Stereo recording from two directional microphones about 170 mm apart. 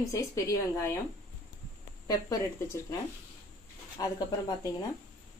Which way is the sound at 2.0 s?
20° left (ahead or behind).